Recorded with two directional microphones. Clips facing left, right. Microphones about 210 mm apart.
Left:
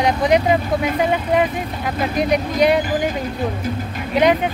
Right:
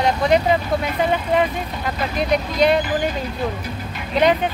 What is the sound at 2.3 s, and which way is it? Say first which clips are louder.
Speech: even; 15° left (ahead or behind).